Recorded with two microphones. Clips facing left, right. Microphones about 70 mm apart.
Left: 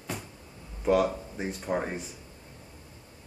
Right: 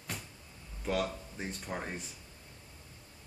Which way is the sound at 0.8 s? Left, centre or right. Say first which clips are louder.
Left 9 dB; centre.